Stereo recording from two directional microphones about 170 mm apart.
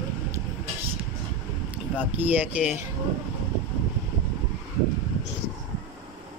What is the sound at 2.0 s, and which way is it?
Speech, 10° right (ahead or behind).